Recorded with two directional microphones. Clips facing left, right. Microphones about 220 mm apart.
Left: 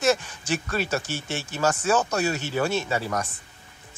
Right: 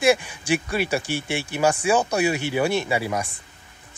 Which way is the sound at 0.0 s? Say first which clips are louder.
Right 3 dB; 10° right (ahead or behind).